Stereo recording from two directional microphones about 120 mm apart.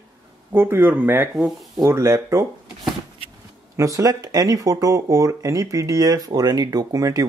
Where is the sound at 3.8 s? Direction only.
25° right (ahead or behind).